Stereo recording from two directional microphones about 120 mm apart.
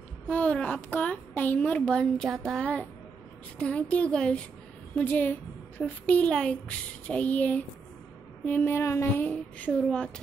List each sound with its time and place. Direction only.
0.3 s a child's voice: 10° left (ahead or behind)
8.5 s a sound: 15° left (ahead or behind)
9.3 s speech: 10° left (ahead or behind)